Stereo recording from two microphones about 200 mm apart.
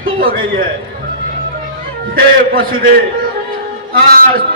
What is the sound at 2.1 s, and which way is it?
Speech, 45° right (ahead or behind).